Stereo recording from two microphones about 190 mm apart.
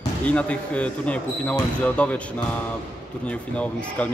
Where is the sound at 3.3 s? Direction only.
5° left (ahead or behind).